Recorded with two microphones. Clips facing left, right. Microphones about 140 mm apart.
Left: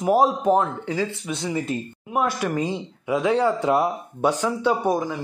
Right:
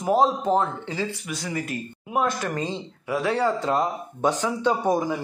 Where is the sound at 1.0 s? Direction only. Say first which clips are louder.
Left 2 dB; 20° left (ahead or behind).